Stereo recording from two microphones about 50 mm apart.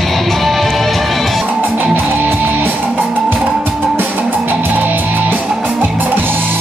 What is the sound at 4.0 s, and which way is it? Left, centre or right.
Music, right.